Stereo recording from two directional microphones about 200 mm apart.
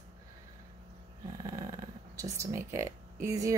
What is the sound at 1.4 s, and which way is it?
Speech, 20° right (ahead or behind).